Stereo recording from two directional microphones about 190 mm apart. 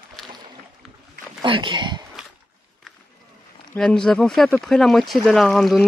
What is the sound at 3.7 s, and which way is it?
Speech, 5° left (ahead or behind).